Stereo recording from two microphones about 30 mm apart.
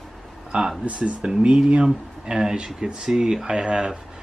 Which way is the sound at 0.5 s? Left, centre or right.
Right.